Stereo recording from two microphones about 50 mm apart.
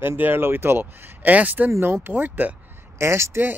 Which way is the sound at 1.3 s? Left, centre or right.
Right.